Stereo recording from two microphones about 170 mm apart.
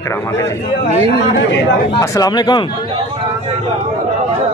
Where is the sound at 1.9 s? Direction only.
20° left (ahead or behind).